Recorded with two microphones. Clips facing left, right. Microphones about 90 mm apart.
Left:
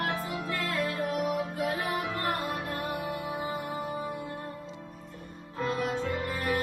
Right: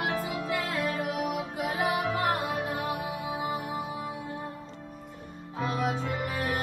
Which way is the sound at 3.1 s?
15° right (ahead or behind).